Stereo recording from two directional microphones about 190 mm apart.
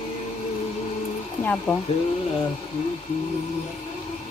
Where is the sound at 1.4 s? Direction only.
10° left (ahead or behind).